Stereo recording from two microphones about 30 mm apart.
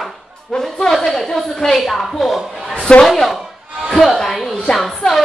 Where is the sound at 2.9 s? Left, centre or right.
Left.